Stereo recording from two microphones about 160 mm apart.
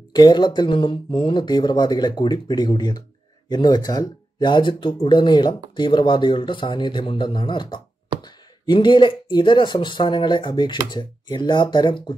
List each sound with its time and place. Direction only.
0.1 s speech: 25° left (ahead or behind)